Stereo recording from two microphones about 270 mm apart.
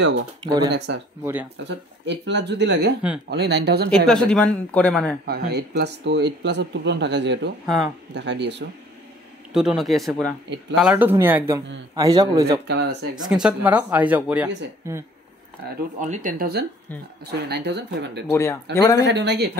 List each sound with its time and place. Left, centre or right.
0.7 s speech: right
1.2 s speech: centre
1.7 s speech: right
3.9 s speech: centre
5.2 s speech: right
7.6 s speech: centre
8.1 s speech: right
9.5 s speech: centre
16.0 s speech: right
18.3 s speech: centre
19.0 s speech: right